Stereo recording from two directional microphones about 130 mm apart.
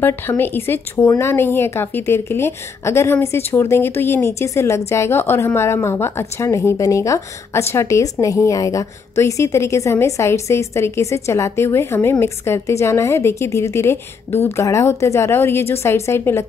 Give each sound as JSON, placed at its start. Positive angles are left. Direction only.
{"t": 0.0, "sound": "speech", "side_deg": 15}